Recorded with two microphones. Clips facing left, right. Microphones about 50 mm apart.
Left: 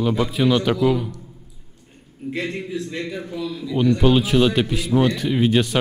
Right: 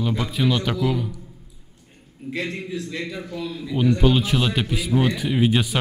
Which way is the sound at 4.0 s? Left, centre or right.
Centre.